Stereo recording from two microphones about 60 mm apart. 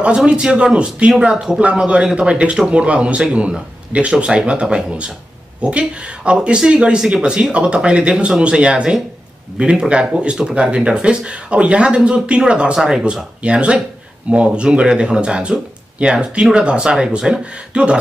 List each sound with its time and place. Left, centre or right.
0.0 s speech: centre
1.6 s speech: centre